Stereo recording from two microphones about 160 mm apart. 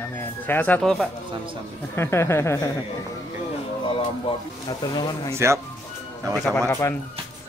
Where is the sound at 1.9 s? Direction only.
15° left (ahead or behind).